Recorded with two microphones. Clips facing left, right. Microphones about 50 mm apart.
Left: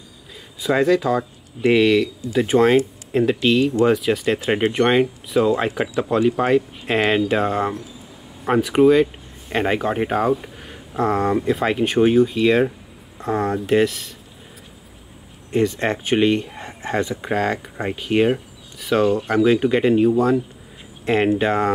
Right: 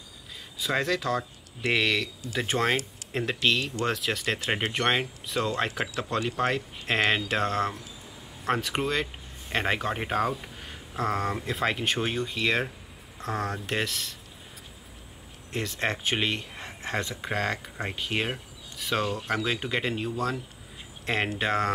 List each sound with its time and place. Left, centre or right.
0.6 s speech: centre
10.4 s a sound: centre
11.0 s speech: centre
15.5 s speech: centre